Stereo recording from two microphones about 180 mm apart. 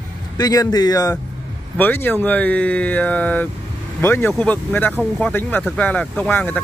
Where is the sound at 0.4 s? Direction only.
20° left (ahead or behind).